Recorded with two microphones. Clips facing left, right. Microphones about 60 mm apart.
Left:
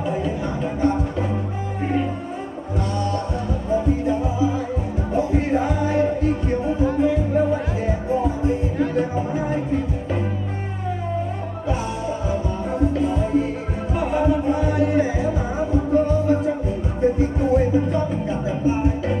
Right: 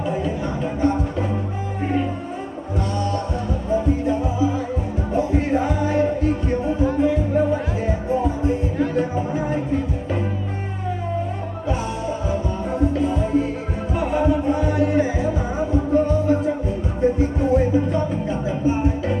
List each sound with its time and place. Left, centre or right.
0.0 s music: centre
3.0 s music: centre
11.6 s music: centre